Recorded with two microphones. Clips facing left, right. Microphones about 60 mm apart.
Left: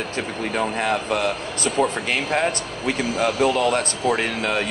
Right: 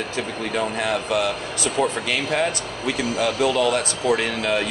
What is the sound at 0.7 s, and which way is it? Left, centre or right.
Speech, left.